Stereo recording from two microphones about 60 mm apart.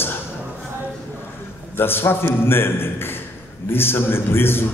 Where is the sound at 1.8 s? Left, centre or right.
Left.